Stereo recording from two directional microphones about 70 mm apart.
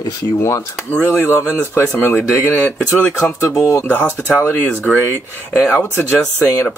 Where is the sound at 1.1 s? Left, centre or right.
Left.